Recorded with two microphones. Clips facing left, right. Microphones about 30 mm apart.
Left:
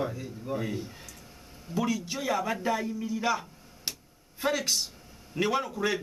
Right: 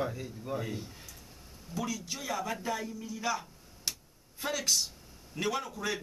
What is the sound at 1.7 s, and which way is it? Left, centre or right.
A man's voice, left.